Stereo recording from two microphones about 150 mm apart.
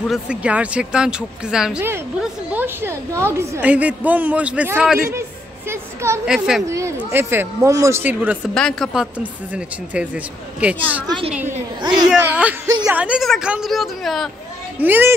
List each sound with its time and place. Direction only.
0.1 s a woman's voice: 5° right (ahead or behind)
6.2 s a woman's voice: 5° right (ahead or behind)
6.7 s a woman's voice: 20° right (ahead or behind)
8.5 s a woman's voice: 5° left (ahead or behind)
11.8 s speech: 30° right (ahead or behind)
12.1 s a woman's voice: 10° right (ahead or behind)
14.8 s a woman's voice: 15° right (ahead or behind)